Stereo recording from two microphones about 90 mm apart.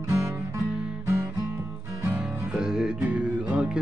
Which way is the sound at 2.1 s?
10° right (ahead or behind).